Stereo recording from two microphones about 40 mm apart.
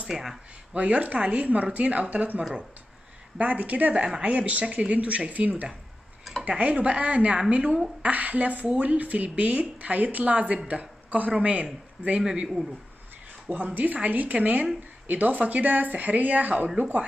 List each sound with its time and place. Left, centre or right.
0.1 s a man's voice: centre
0.7 s speech: right
3.3 s speech: right
3.9 s a woman's voice: right
4.2 s speech: right
8.0 s speech: right
12.2 s a man's voice: centre
13.5 s speech: right